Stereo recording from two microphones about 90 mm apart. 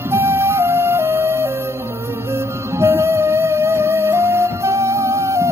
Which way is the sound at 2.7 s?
30° right (ahead or behind).